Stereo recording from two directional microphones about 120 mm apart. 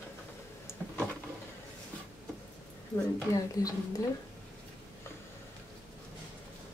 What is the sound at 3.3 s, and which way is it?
Speech, 30° left (ahead or behind).